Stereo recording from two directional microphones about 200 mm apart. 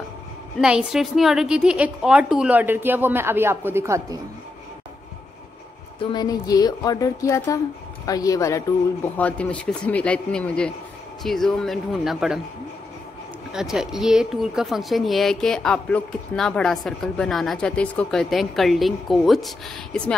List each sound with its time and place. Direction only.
0.6 s a woman's voice: 5° right (ahead or behind)
5.9 s a woman's voice: 20° left (ahead or behind); by 12.4 s centre (ahead or behind)
13.5 s speech: 5° right (ahead or behind)